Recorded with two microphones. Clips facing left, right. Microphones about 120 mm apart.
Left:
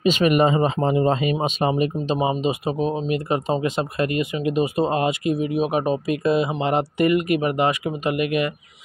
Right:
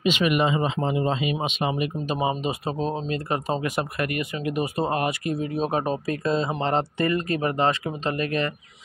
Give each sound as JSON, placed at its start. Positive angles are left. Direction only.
{"t": 0.0, "sound": "speech", "side_deg": 40}
{"t": 2.1, "sound": "speech", "side_deg": 20}
{"t": 3.6, "sound": "speech", "side_deg": 20}